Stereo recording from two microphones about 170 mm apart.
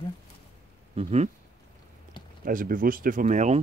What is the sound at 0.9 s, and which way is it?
Speech, 40° right (ahead or behind).